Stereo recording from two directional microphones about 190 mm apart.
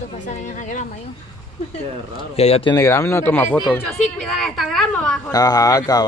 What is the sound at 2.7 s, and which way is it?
Speech, 15° left (ahead or behind).